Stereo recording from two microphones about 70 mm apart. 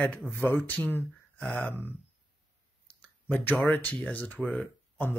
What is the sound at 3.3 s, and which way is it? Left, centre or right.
Speech, left.